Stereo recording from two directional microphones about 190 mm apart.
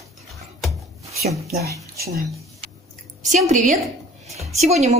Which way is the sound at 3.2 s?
40° right (ahead or behind).